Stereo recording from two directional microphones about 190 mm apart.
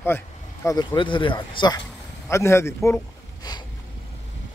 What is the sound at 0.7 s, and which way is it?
Speech, 25° left (ahead or behind).